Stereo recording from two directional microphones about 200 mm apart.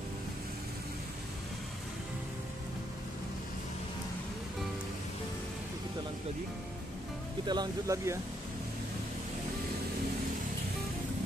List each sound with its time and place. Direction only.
7.4 s speech: 20° right (ahead or behind)